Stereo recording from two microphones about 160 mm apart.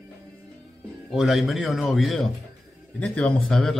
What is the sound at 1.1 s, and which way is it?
A man's voice, centre (ahead or behind).